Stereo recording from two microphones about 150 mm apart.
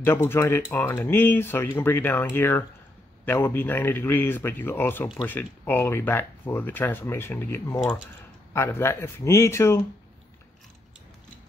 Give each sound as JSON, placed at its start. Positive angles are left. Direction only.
{"t": 0.0, "sound": "speech", "side_deg": 15}